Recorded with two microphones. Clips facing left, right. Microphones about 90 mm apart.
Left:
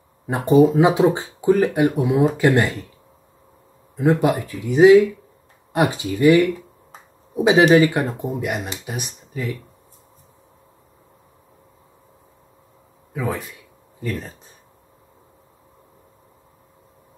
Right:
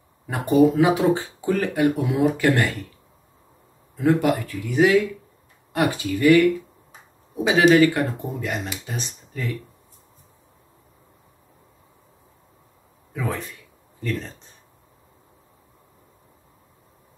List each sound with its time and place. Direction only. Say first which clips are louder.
0.3 s speech: left 3 dB; 20° left (ahead or behind)
3.9 s speech: left 2 dB; 20° left (ahead or behind)
13.1 s speech: left 3 dB; 10° left (ahead or behind)